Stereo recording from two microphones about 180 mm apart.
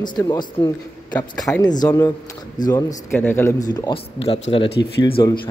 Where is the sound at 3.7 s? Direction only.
25° left (ahead or behind).